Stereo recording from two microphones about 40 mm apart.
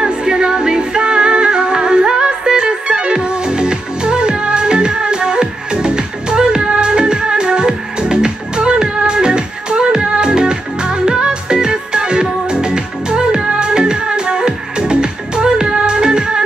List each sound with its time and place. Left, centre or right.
0.0 s music: centre